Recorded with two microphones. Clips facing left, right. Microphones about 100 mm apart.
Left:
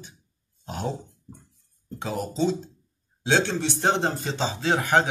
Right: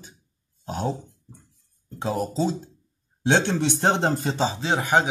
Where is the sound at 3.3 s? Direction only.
20° right (ahead or behind).